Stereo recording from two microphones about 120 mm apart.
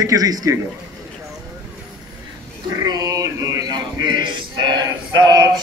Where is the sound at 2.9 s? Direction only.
30° right (ahead or behind).